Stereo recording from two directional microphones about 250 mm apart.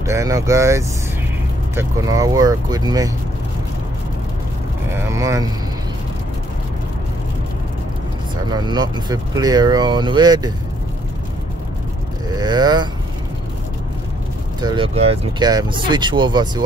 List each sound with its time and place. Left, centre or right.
0.0 s speech: centre
4.9 s speech: centre
8.5 s speech: centre
12.4 s speech: centre
14.6 s speech: centre